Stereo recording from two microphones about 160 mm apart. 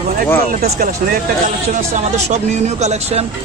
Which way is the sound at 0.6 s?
75° right (ahead or behind).